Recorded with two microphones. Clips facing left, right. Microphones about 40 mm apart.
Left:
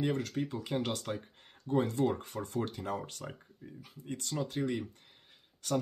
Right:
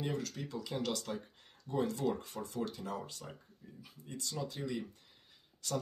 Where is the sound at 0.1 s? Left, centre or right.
Left.